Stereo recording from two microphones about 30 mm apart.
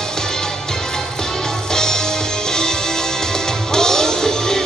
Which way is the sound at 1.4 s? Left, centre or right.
Centre.